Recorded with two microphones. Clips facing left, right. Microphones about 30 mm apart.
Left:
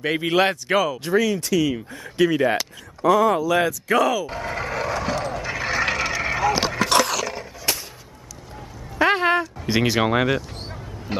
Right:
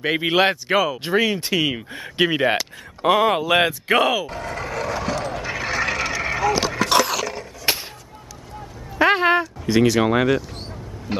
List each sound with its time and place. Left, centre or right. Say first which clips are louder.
0.0 s speech: right 1 dB; right
1.0 s speech: right 1 dB; right
4.3 s speech: left 1 dB; centre
5.3 s a sound: even; centre
7.7 s music: right 3 dB; right
8.9 s a sound: right 2 dB; centre
9.7 s speech: right 4 dB; centre
10.0 s speech: right 2 dB; centre
11.1 s a sound: right 1 dB; centre